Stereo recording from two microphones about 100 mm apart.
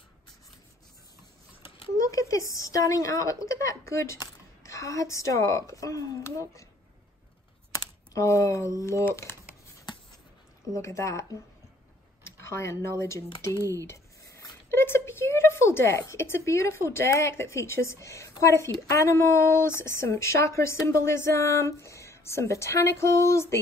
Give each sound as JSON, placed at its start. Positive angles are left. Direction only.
{"t": 2.0, "sound": "a woman's voice", "side_deg": 35}
{"t": 7.7, "sound": "speech", "side_deg": 35}
{"t": 9.1, "sound": "scratch", "side_deg": 30}
{"t": 10.7, "sound": "a woman's voice", "side_deg": 30}
{"t": 12.3, "sound": "speech", "side_deg": 25}
{"t": 13.6, "sound": "speech", "side_deg": -35}
{"t": 13.8, "sound": "a sound", "side_deg": 30}
{"t": 16.9, "sound": "speech", "side_deg": 25}